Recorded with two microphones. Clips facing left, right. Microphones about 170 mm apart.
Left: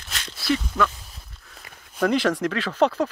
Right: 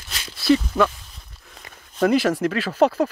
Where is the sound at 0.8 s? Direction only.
20° right (ahead or behind).